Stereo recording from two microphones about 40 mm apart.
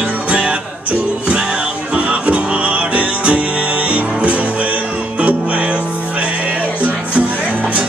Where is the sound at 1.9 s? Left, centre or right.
Right.